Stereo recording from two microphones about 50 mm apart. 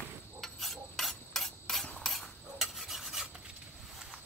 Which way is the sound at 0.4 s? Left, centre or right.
Centre.